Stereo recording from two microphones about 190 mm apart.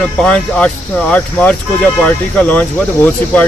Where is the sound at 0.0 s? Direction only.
5° left (ahead or behind).